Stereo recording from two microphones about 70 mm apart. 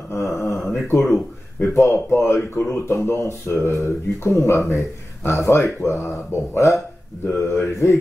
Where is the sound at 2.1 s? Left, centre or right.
Left.